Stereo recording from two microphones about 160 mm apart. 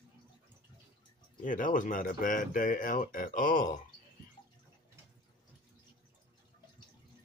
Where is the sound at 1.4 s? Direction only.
55° left (ahead or behind).